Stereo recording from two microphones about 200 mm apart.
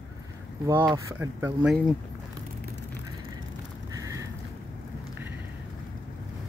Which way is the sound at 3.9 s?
15° right (ahead or behind).